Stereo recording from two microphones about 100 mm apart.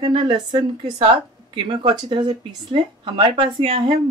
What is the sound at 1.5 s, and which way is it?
A woman's voice, 60° right (ahead or behind).